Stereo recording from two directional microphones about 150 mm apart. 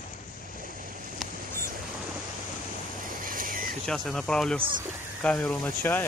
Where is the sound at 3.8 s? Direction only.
5° left (ahead or behind).